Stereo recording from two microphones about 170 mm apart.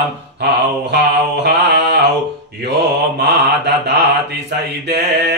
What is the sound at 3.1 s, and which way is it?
Mantra, 80° right.